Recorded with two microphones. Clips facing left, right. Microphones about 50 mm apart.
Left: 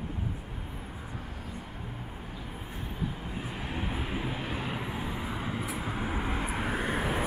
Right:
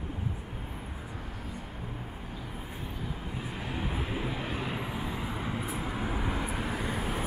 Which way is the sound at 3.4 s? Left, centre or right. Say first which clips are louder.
Even; centre.